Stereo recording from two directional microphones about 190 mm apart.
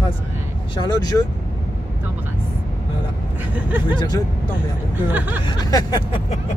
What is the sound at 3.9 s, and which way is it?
Speech, 25° left (ahead or behind).